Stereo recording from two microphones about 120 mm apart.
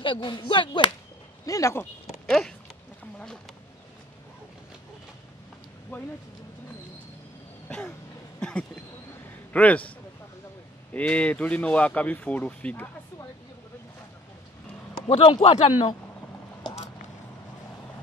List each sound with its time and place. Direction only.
0.0 s whip: 40° left (ahead or behind)
1.4 s speech: 30° left (ahead or behind)
2.2 s speech: centre (ahead or behind)
5.9 s speech: 15° left (ahead or behind)
8.4 s a sound: 5° left (ahead or behind)
9.5 s speech: 10° left (ahead or behind)
15.0 s whip: 50° left (ahead or behind)